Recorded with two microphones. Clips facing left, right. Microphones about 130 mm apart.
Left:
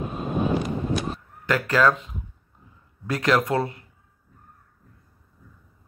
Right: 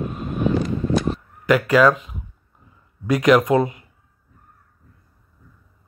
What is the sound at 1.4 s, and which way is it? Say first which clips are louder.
Speech: right 5 dB; 10° right (ahead or behind).